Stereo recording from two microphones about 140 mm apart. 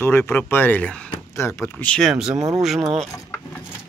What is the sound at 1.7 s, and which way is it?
Speech, 5° left (ahead or behind).